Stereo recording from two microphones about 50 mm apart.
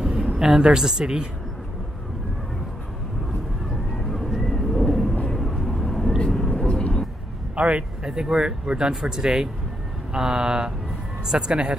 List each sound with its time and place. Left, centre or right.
0.0 s a sound: centre
0.6 s speech: centre
4.0 s a sound: centre
4.4 s vehicle: centre
7.5 s speech: right
8.0 s speech: centre